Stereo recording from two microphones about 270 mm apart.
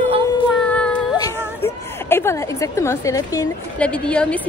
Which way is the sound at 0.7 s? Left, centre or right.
Centre.